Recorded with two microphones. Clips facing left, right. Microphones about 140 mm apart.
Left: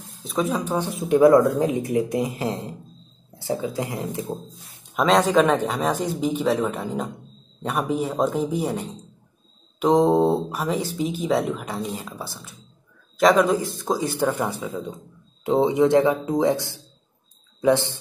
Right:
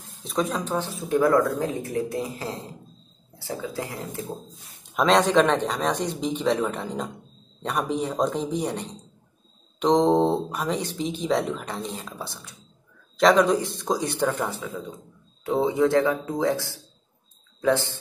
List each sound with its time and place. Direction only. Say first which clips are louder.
0.2 s speech: left 2 dB; centre (ahead or behind)
1.0 s speech: left 6 dB; 20° left (ahead or behind)
4.9 s speech: left 1 dB; centre (ahead or behind)
14.3 s speech: left 3 dB; 15° left (ahead or behind)